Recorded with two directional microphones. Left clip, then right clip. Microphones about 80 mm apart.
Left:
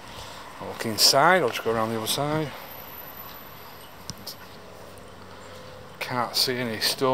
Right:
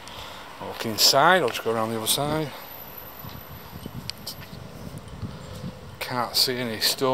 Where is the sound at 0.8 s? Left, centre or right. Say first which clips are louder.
Even; centre.